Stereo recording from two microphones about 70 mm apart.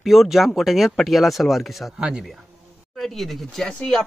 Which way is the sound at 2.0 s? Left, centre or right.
Centre.